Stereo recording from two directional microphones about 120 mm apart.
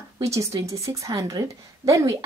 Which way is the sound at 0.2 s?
25° right (ahead or behind).